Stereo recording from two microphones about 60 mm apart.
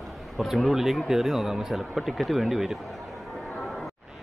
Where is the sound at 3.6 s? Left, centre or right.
Centre.